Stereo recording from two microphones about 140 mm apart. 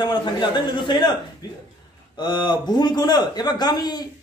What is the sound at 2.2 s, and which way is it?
A man's voice, 30° left (ahead or behind).